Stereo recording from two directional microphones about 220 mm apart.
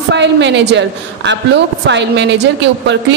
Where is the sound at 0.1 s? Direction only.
55° right (ahead or behind).